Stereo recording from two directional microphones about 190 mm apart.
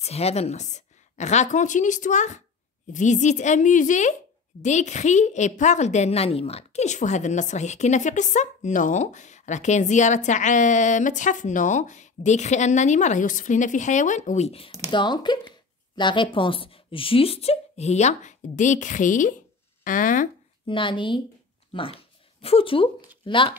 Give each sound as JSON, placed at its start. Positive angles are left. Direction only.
{"t": 0.0, "sound": "a woman's voice", "side_deg": 35}
{"t": 20.6, "sound": "speech", "side_deg": 25}